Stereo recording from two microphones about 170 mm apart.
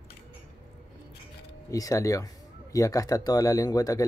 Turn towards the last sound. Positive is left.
turn(degrees=20)  # may be behind; listen again after turning